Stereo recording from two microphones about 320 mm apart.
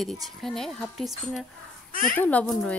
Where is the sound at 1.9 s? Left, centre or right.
Left.